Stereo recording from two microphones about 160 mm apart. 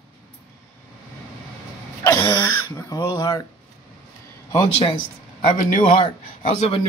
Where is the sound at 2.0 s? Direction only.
20° left (ahead or behind).